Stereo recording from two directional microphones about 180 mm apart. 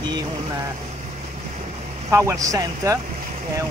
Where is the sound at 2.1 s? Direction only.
15° right (ahead or behind).